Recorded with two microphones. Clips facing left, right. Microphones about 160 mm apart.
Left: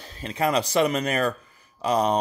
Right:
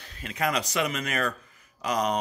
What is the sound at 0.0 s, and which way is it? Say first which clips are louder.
A man's voice: left 4 dB; 30° left (ahead or behind).